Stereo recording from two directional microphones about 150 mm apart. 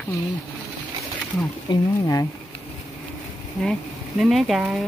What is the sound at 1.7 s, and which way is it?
Speech, 20° left (ahead or behind).